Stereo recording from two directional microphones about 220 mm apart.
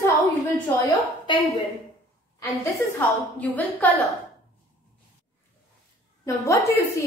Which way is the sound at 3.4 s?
5° left (ahead or behind).